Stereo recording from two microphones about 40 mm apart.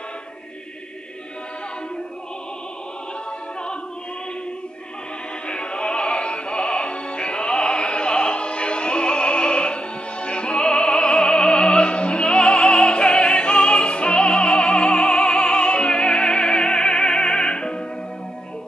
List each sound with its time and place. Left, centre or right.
5.5 s music: left